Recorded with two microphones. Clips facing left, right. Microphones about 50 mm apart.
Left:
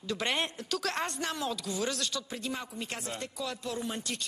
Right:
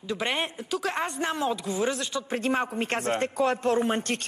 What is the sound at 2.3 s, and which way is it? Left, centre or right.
Speech, right.